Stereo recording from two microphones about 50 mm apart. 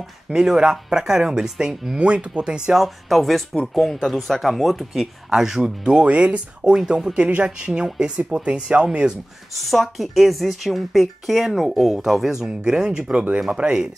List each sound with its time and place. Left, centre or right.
0.3 s speech: centre
2.0 s speech: centre
2.7 s speech: centre; by 7.4 s right
7.4 s speech: centre
9.5 s speech: centre